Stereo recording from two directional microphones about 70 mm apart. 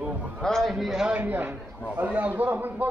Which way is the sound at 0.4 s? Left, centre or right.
Centre.